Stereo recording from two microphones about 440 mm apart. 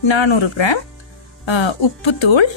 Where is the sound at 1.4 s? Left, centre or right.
Left.